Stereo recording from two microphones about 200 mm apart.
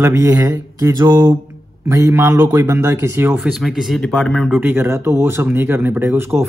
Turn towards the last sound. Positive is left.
turn(degrees=-10)  # may be behind; listen again after turning